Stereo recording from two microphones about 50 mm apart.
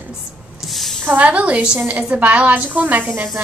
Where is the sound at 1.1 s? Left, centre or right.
Right.